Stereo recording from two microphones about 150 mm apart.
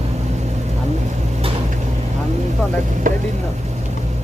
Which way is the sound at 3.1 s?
60° right (ahead or behind).